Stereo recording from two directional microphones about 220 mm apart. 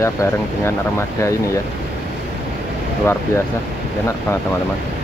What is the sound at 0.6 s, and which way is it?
Speech, 10° left (ahead or behind).